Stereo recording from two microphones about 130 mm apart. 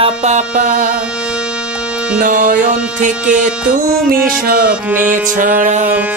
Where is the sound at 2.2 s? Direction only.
90° right.